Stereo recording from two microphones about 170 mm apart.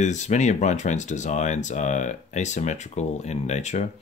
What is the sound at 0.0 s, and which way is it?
Speech, 45° left (ahead or behind).